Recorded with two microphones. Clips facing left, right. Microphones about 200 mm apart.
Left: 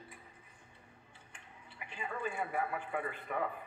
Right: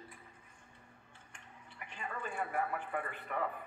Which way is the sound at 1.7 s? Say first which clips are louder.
Left 2 dB; 5° left (ahead or behind).